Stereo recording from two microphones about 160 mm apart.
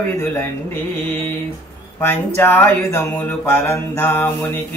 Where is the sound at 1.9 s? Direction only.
15° left (ahead or behind).